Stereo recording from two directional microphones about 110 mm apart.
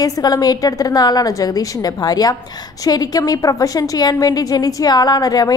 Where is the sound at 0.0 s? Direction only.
35° left (ahead or behind).